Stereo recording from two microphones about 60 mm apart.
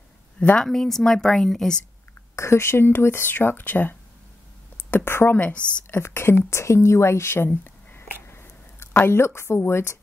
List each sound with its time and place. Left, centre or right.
0.6 s speech: centre
2.3 s speech: left
4.9 s speech: left
5.4 s a woman's voice: left
5.9 s a woman's voice: left
6.5 s a sound: left
9.7 s a woman's voice: left